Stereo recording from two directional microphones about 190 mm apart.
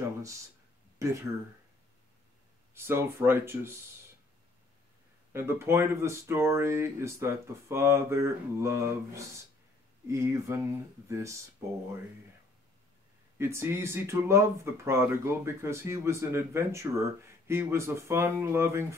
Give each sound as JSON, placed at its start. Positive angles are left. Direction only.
{"t": 2.7, "sound": "speech", "side_deg": -15}
{"t": 5.3, "sound": "speech", "side_deg": -10}
{"t": 13.4, "sound": "speech", "side_deg": -15}